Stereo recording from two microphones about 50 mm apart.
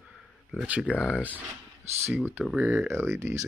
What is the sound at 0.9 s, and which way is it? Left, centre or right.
Speech, left.